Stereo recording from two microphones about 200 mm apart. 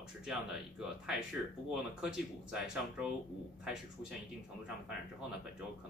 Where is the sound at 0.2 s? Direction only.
5° right (ahead or behind).